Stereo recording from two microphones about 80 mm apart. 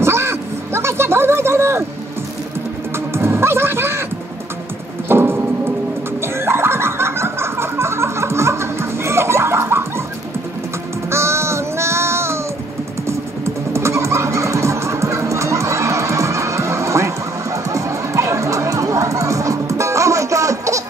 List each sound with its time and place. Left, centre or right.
0.0 s a sound: right
3.1 s music: right
5.0 s music: right
6.2 s a sound: right
11.1 s music: right
13.7 s music: right